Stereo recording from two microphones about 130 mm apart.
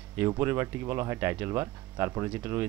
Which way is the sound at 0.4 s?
20° right (ahead or behind).